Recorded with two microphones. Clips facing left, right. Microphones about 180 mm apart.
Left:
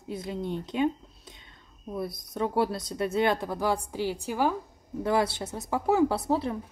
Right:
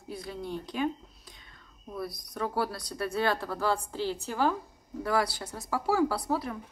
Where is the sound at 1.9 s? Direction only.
20° left (ahead or behind).